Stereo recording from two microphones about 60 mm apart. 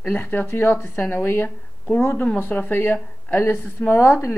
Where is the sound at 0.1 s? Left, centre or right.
Left.